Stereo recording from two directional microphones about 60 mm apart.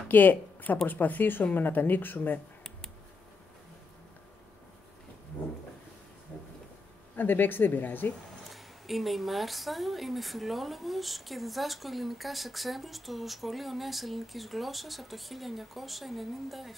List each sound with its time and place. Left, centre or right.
0.1 s speech: left
7.2 s speech: left
8.5 s speech: centre